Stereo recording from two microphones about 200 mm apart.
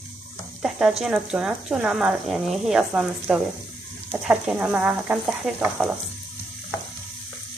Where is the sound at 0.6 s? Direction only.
5° right (ahead or behind).